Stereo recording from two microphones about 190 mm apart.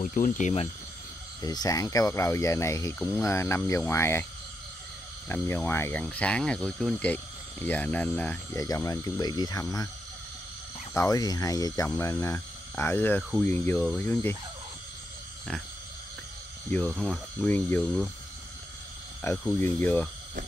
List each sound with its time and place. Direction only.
0.0 s speech: 45° left (ahead or behind)
1.4 s speech: 20° left (ahead or behind)
5.3 s speech: 10° left (ahead or behind)
10.9 s speech: 15° left (ahead or behind)
16.7 s speech: 5° left (ahead or behind)
19.2 s speech: 15° left (ahead or behind)